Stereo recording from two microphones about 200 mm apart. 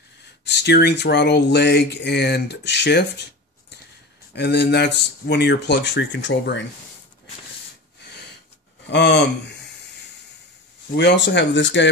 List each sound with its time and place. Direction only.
0.5 s speech: 55° left (ahead or behind)
4.4 s speech: 55° left (ahead or behind)
8.8 s speech: 60° left (ahead or behind)
11.0 s speech: 60° left (ahead or behind)